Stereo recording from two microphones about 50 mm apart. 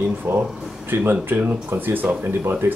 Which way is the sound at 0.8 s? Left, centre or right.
Right.